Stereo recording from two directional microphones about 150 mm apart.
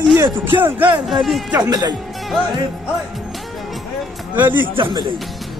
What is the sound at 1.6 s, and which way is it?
Speech, 25° right (ahead or behind).